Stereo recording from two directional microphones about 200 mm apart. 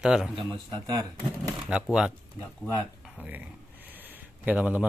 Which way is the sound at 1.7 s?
5° right (ahead or behind).